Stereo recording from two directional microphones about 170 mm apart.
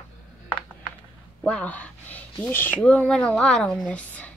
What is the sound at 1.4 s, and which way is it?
Speech, 5° left (ahead or behind).